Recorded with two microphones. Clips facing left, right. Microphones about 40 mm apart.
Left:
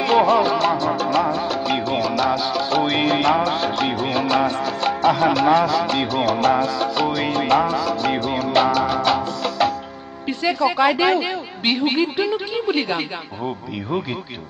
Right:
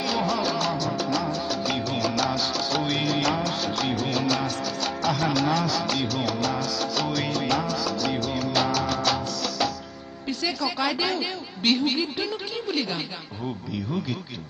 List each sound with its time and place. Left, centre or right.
0.0 s music: left
2.7 s music: left
10.2 s speech: left